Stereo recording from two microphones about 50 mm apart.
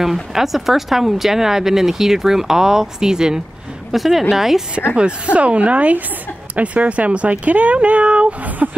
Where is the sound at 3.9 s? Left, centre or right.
Centre.